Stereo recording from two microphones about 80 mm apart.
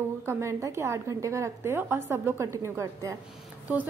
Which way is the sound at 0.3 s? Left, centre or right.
Right.